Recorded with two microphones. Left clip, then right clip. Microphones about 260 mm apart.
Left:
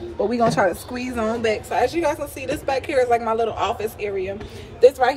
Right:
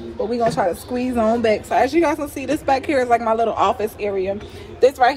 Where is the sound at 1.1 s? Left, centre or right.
Centre.